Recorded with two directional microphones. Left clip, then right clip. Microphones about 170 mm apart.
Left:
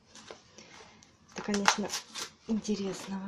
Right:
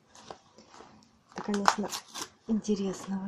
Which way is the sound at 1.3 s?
Centre (ahead or behind).